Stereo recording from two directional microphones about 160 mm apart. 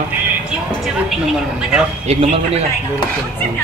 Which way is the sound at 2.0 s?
40° right (ahead or behind).